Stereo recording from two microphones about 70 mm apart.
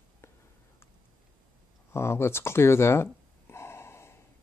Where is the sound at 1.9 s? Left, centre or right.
Left.